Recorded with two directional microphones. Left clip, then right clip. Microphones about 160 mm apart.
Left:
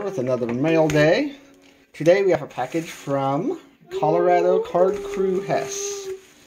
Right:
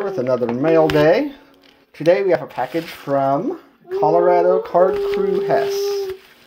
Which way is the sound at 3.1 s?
25° right (ahead or behind).